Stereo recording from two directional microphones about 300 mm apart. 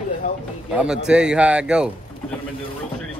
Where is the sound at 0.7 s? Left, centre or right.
Centre.